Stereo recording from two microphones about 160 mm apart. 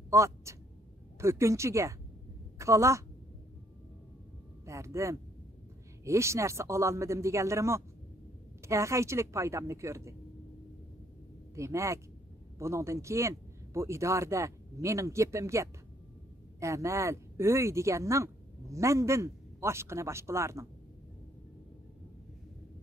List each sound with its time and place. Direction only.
0.1 s a woman's voice: 20° right (ahead or behind)
4.6 s speech: 20° right (ahead or behind)
11.5 s speech: 20° right (ahead or behind)